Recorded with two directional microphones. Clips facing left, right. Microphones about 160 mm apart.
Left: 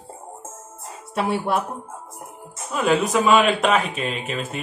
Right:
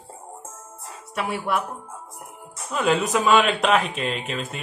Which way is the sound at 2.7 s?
Centre (ahead or behind).